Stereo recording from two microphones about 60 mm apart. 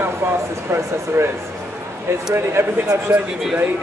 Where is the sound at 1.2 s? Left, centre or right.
Right.